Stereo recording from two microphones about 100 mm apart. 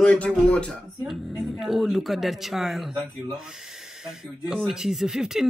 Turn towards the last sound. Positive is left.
turn(degrees=-5)  # may be behind; listen again after turning